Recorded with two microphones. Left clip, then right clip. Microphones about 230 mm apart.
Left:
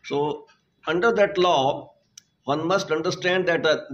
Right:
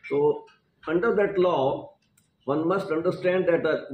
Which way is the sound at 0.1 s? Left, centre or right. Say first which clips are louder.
Right 2 dB; left.